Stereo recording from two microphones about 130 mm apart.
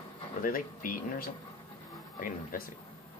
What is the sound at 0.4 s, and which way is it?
Speech, 90° left.